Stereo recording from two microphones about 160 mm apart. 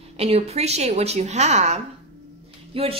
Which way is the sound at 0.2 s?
40° right (ahead or behind).